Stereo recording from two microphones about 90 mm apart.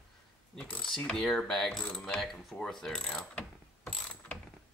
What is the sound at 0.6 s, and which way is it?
Mechanisms, 15° left (ahead or behind).